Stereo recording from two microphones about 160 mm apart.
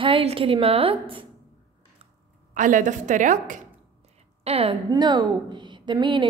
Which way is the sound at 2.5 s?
55° right (ahead or behind).